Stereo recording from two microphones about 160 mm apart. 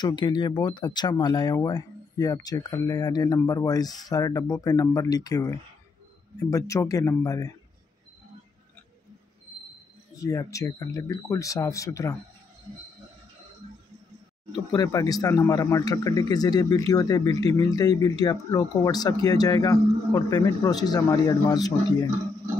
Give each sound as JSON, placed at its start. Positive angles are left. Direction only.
{"t": 0.0, "sound": "speech", "side_deg": 30}
{"t": 10.2, "sound": "speech", "side_deg": 20}
{"t": 14.7, "sound": "speech", "side_deg": 20}